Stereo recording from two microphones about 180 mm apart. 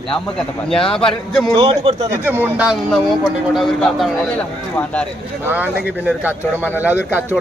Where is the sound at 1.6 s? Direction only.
30° right (ahead or behind).